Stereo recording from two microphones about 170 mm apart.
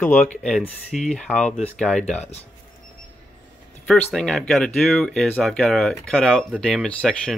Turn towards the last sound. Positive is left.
turn(degrees=5)  # may be behind; listen again after turning